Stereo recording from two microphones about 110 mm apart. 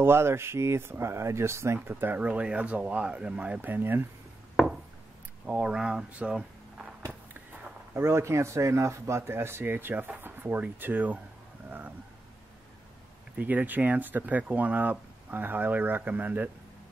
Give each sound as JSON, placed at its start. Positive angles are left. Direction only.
{"t": 0.0, "sound": "speech", "side_deg": -20}
{"t": 5.5, "sound": "speech", "side_deg": -10}
{"t": 7.9, "sound": "speech", "side_deg": -25}
{"t": 13.4, "sound": "speech", "side_deg": -15}